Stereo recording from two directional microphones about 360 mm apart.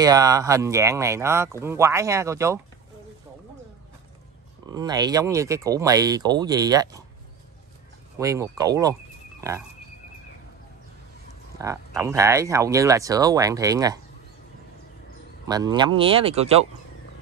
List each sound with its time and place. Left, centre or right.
0.0 s speech: centre
4.6 s speech: centre
8.2 s speech: centre
11.5 s speech: centre
15.4 s speech: centre